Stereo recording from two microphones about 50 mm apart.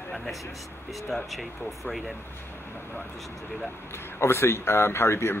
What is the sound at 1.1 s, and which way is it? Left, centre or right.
Speech, centre.